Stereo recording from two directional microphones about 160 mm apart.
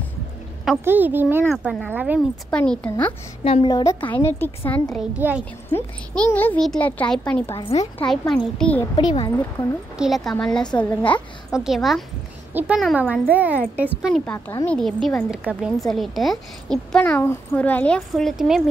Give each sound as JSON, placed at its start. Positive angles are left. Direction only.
{"t": 0.8, "sound": "speech", "side_deg": -10}
{"t": 2.1, "sound": "speech", "side_deg": 5}
{"t": 3.4, "sound": "speech", "side_deg": 35}
{"t": 3.7, "sound": "a woman's voice", "side_deg": 20}
{"t": 8.9, "sound": "speech", "side_deg": 30}
{"t": 9.9, "sound": "a woman's voice", "side_deg": 0}
{"t": 11.5, "sound": "a woman's voice", "side_deg": 0}
{"t": 14.1, "sound": "a woman's voice", "side_deg": 10}